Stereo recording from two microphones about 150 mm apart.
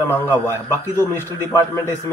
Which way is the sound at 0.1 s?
15° left (ahead or behind).